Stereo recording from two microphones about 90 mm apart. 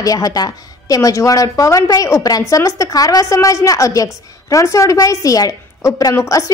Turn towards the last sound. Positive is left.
turn(degrees=35)  # may be behind; listen again after turning